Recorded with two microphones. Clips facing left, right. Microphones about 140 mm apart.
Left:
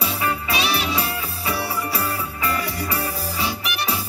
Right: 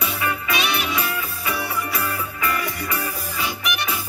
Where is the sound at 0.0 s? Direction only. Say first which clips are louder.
Left 1 dB; 35° left (ahead or behind).